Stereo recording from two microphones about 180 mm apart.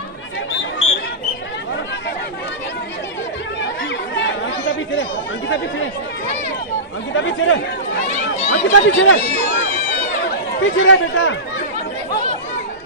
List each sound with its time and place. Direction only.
0.5 s a sound: 90° left
4.2 s chatter: 90° left
7.2 s speech: 90° left
10.6 s speech: 90° left